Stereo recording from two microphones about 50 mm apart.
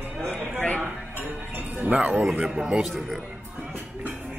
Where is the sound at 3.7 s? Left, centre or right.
Right.